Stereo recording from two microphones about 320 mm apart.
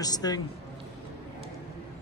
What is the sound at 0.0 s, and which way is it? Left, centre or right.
Speech, centre.